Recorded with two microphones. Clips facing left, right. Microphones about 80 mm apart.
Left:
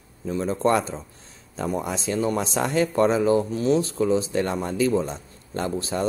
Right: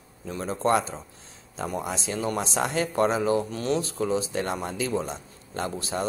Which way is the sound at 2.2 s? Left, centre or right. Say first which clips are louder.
Left 2 dB; left.